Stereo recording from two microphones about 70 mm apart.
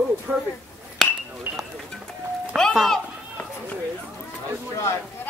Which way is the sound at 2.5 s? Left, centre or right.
Centre.